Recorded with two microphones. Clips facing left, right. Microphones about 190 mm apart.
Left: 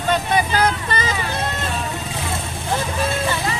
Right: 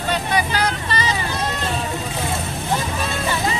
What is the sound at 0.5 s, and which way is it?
Vehicle, 50° left (ahead or behind).